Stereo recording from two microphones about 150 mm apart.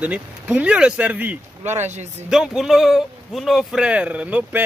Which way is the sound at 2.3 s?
5° right (ahead or behind).